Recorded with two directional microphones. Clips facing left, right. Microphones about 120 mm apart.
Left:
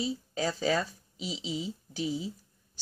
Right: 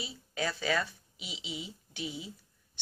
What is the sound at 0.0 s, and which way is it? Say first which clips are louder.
Speech: left 5 dB; 35° left (ahead or behind).